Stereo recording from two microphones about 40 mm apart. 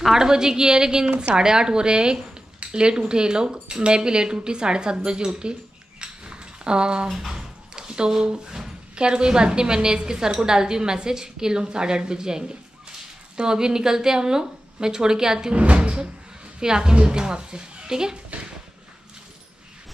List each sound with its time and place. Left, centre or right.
0.1 s a woman's voice: centre
7.1 s a woman's voice: centre
7.3 s a sound: centre
9.0 s a woman's voice: right
15.5 s a woman's voice: right
16.5 s a woman's voice: centre
18.3 s a sound: right